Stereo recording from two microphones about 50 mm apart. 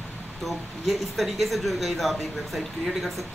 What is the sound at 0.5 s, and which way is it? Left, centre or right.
A woman's voice, centre.